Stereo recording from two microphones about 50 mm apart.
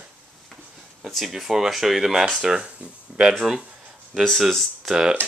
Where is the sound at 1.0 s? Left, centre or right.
Centre.